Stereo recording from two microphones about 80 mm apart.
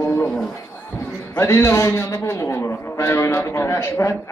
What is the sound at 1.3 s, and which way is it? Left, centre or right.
A man's voice, left.